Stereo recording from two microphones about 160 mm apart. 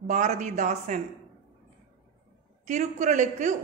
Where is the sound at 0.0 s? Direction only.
45° right (ahead or behind).